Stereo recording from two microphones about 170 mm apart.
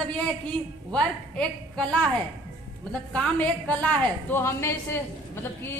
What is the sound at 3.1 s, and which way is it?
A woman's voice, 5° left (ahead or behind).